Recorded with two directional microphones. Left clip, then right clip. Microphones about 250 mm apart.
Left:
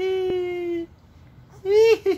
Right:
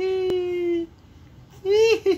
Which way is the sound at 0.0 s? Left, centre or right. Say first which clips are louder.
Even; left.